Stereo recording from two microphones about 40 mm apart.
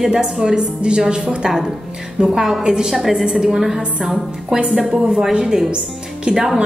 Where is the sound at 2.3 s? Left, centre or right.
Centre.